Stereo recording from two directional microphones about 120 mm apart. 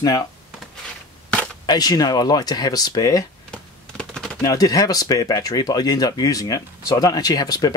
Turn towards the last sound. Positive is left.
turn(degrees=35)  # may be behind; listen again after turning